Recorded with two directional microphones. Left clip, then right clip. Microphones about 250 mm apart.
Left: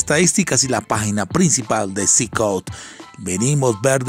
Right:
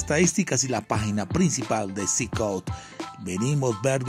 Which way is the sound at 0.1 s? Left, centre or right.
Centre.